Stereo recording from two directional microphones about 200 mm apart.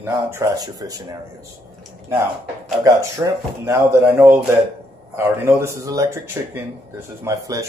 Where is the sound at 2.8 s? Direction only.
15° right (ahead or behind).